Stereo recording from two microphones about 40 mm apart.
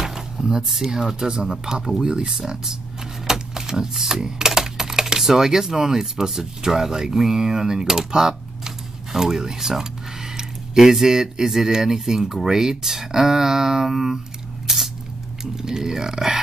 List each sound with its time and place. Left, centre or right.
0.0 s a sound: centre
0.9 s speech: centre
14.7 s spray: centre
15.4 s speech: centre